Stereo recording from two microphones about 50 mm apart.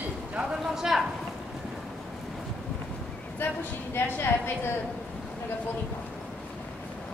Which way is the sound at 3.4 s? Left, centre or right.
Left.